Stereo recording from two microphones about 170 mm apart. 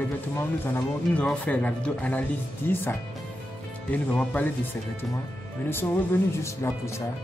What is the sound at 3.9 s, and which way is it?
Speech, 10° left (ahead or behind).